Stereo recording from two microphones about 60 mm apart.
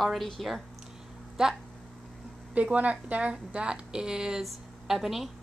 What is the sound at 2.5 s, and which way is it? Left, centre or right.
A woman's voice, right.